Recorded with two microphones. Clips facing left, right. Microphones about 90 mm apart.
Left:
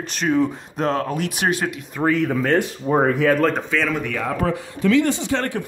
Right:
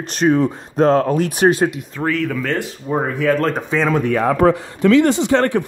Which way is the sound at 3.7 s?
20° right (ahead or behind).